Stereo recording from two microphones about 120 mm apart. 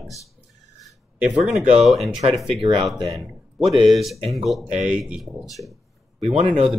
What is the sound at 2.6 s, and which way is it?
Speech, 40° right (ahead or behind).